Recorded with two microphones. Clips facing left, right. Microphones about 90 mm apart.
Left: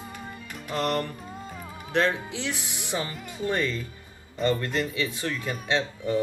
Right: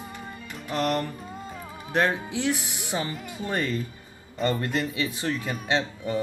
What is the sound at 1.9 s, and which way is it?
Speech, 15° right (ahead or behind).